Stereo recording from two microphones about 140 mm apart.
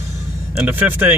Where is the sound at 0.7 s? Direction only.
15° right (ahead or behind).